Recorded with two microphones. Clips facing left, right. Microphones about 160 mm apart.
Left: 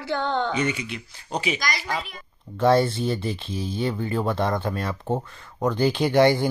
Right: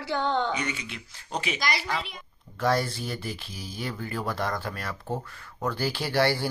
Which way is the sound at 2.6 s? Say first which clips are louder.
Left 7 dB; 25° left (ahead or behind).